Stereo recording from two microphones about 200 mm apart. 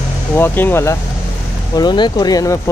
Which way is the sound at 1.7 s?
20° left (ahead or behind).